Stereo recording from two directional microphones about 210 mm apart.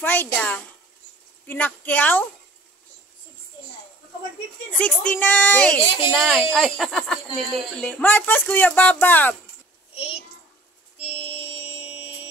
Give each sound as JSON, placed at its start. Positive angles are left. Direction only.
{"t": 0.0, "sound": "speech", "side_deg": 10}
{"t": 4.7, "sound": "a woman's voice", "side_deg": 5}
{"t": 9.9, "sound": "child singing", "side_deg": 30}
{"t": 11.0, "sound": "music", "side_deg": 30}
{"t": 11.6, "sound": "a sound", "side_deg": -5}